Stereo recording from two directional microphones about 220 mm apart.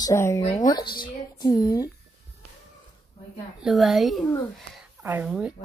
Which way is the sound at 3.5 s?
Centre (ahead or behind).